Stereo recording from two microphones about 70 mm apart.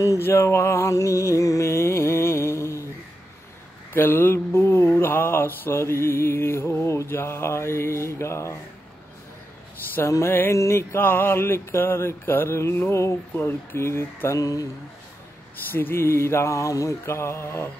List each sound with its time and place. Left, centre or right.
0.2 s music: left
3.9 s mantra: left
10.0 s music: left
10.5 s mantra: left
14.4 s speech: left
15.7 s mantra: left